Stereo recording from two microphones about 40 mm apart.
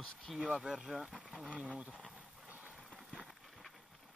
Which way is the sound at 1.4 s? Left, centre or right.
Right.